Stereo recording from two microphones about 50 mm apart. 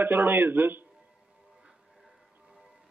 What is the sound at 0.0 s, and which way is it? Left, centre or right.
Speech, right.